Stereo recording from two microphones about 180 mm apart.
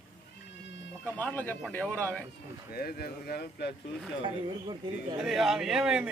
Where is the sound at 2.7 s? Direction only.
55° left (ahead or behind).